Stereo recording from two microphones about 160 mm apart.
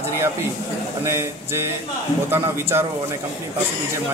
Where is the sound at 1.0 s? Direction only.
15° right (ahead or behind).